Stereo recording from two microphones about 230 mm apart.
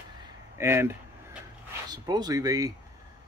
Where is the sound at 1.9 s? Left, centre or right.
Centre.